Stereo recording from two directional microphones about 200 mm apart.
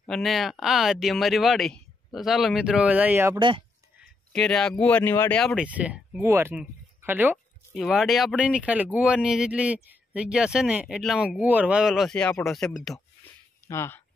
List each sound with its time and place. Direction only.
0.0 s speech: centre (ahead or behind)
3.3 s speech: 25° right (ahead or behind)
4.3 s speech: 5° left (ahead or behind)
13.7 s speech: 15° left (ahead or behind)